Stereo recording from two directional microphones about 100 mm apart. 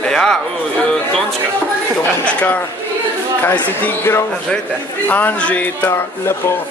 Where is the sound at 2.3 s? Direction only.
10° left (ahead or behind).